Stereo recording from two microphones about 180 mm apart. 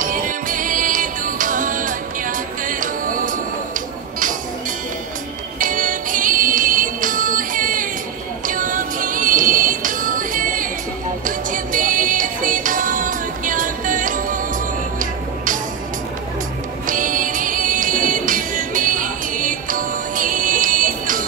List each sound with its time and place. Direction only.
0.0 s music: 50° right (ahead or behind)
5.6 s music: 45° right (ahead or behind)
16.8 s music: 45° right (ahead or behind)